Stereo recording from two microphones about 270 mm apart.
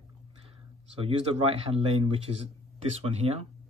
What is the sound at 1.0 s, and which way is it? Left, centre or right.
Speech, right.